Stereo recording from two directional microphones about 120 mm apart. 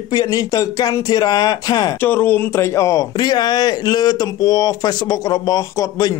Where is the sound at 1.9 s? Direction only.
15° left (ahead or behind).